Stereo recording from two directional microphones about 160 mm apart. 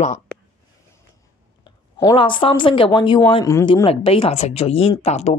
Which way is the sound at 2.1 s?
30° left (ahead or behind).